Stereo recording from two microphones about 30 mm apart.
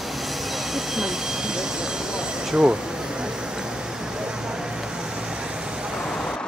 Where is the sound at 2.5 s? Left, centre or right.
Right.